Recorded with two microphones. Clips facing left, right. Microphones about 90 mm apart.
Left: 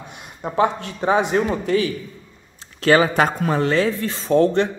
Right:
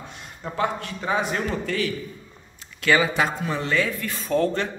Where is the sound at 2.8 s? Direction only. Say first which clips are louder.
Left 5 dB; 40° left (ahead or behind).